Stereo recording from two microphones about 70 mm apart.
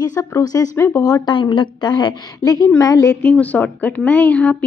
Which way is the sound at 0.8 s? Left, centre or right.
Left.